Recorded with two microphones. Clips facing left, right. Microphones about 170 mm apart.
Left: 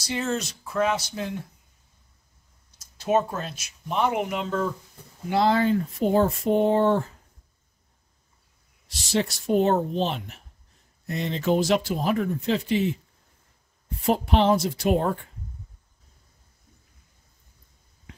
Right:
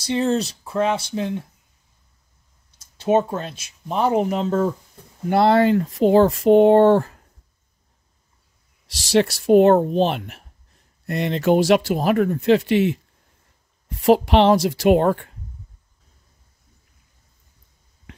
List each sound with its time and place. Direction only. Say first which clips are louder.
0.0 s speech: right 7 dB; 30° right (ahead or behind)
2.8 s speech: right 5 dB; 25° right (ahead or behind)
5.3 s speech: right 5 dB; 65° right (ahead or behind)
8.8 s speech: right 8 dB; 80° right
13.8 s speech: right 8 dB; 85° right